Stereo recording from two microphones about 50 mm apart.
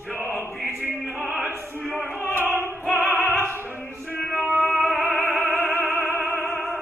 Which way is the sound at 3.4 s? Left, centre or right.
Right.